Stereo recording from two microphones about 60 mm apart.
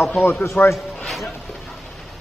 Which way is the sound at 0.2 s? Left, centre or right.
Left.